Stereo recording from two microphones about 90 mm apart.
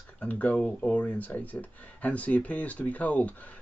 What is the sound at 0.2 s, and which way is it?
Speech, 15° left (ahead or behind).